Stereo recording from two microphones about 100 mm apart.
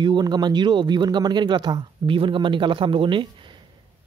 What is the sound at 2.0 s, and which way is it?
Speech, 60° right (ahead or behind).